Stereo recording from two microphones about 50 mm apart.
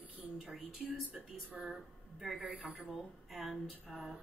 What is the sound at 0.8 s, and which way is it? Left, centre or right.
Speech, centre.